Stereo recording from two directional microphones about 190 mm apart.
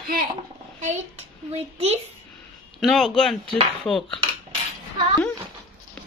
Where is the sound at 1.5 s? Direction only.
35° right (ahead or behind).